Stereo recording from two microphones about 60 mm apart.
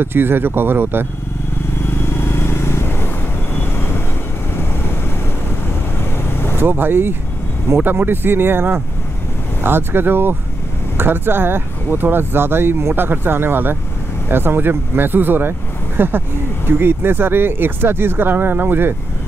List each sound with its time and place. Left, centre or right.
0.0 s speech: right
1.8 s vehicle: left
6.6 s speech: right